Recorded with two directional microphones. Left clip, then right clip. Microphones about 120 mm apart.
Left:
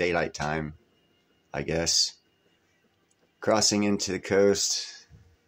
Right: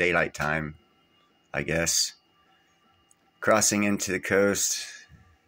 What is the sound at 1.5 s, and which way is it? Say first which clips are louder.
Speech: right 2 dB; 40° left (ahead or behind).